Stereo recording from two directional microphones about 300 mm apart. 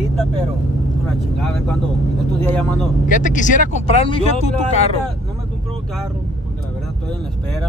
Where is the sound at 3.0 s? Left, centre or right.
Left.